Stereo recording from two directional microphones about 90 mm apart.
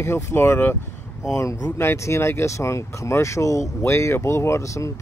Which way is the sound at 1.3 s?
40° left (ahead or behind).